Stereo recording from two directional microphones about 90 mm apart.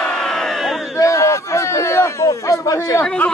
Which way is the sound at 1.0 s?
35° left (ahead or behind).